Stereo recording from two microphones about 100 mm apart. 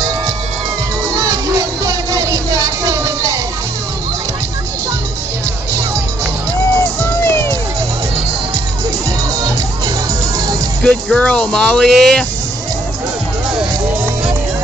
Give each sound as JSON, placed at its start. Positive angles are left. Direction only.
{"t": 1.1, "sound": "music", "side_deg": -35}
{"t": 7.0, "sound": "music", "side_deg": 25}
{"t": 10.8, "sound": "speech", "side_deg": 10}